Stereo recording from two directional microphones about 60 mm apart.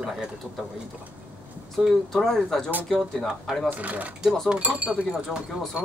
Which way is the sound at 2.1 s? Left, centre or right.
Centre.